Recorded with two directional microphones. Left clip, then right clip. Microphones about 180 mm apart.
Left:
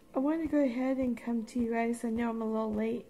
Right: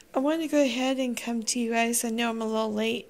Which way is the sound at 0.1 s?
25° right (ahead or behind).